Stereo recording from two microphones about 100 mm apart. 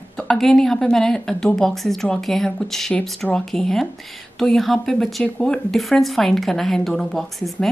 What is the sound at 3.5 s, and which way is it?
Speech, 5° left (ahead or behind).